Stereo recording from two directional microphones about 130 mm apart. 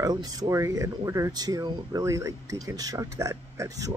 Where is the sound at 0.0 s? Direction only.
30° right (ahead or behind).